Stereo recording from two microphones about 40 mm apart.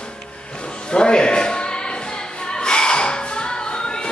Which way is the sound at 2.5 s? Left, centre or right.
Left.